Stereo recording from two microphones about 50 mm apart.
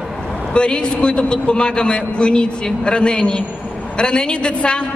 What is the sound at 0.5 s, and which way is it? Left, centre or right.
A man's voice, centre.